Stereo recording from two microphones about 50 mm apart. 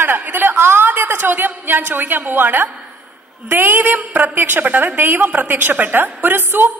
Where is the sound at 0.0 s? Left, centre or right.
Right.